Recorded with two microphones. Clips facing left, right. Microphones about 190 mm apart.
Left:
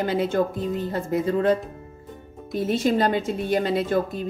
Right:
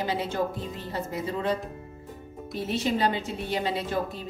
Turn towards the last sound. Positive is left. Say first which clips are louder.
# left 6 dB
turn(degrees=50)  # may be behind; listen again after turning